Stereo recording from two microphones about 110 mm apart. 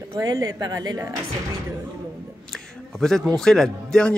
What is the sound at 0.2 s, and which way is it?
Speech, 35° right (ahead or behind).